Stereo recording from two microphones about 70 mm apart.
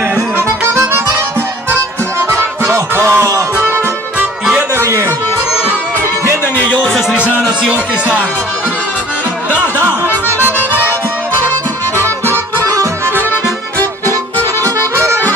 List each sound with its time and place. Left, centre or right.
0.1 s harmonica: right
1.7 s music: right
6.5 s music: left
7.2 s a sound: right
13.3 s accordion: left
14.6 s accordion: right